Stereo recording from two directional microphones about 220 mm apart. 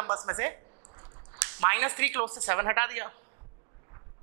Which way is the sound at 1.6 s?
15° right (ahead or behind).